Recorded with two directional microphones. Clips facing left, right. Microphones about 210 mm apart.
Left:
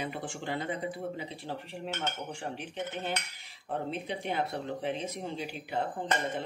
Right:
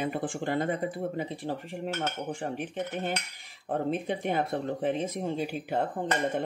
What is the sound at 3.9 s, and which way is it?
Speech, 50° right (ahead or behind).